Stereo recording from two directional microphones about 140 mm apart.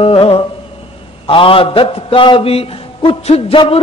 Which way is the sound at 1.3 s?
40° left (ahead or behind).